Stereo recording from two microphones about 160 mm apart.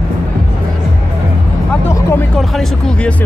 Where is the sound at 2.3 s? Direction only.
Centre (ahead or behind).